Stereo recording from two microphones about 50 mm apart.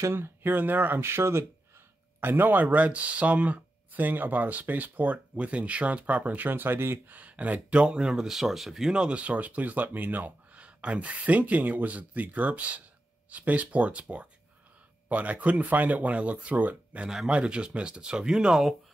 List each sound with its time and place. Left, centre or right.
0.1 s speech: right
1.0 s speech: right
2.1 s speech: right
7.2 s speech: right; by 8.9 s centre
8.9 s speech: right; by 18.8 s centre